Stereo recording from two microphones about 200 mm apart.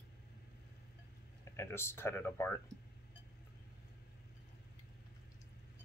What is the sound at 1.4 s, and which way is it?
Speech, 15° left (ahead or behind).